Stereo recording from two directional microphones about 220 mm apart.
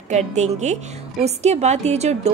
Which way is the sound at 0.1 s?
30° right (ahead or behind).